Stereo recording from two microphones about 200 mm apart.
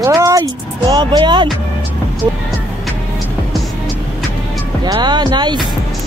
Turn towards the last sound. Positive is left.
turn(degrees=-20)  # may be behind; listen again after turning